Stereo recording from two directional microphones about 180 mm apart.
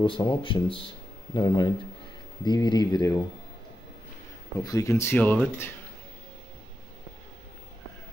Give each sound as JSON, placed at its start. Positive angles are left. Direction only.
{"t": 0.0, "sound": "speech", "side_deg": 30}
{"t": 4.6, "sound": "speech", "side_deg": 15}